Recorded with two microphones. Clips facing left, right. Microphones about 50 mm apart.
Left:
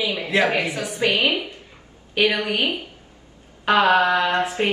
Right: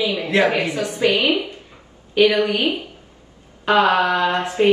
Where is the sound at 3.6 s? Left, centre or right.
Left.